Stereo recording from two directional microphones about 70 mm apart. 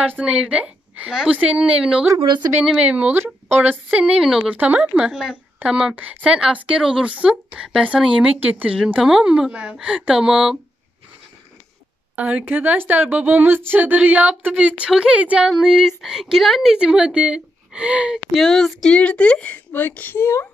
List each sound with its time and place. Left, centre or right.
0.2 s a woman's voice: centre
2.2 s a woman's voice: right
2.8 s a woman's voice: centre
4.0 s speech: centre
4.5 s speech: right
12.2 s a woman's voice: right
15.5 s speech: centre
16.7 s a woman's voice: centre
18.1 s a woman's voice: centre; by 20.2 s left
20.2 s speech: left